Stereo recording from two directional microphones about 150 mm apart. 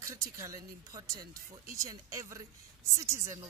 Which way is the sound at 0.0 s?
20° right (ahead or behind).